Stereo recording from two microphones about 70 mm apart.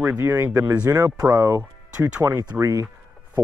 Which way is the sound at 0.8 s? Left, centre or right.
Right.